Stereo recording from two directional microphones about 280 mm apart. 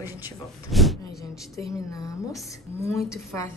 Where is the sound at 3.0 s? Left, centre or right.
Centre.